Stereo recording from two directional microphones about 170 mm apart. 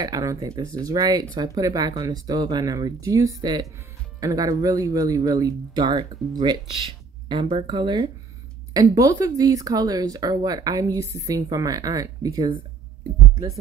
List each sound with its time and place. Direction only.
0.0 s speech: 20° right (ahead or behind)